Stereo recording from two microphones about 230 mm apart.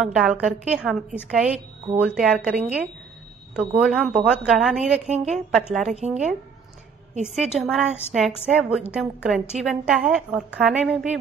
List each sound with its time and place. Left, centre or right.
0.0 s a woman's voice: centre
5.1 s a woman's voice: right
5.5 s a woman's voice: centre
7.2 s a woman's voice: centre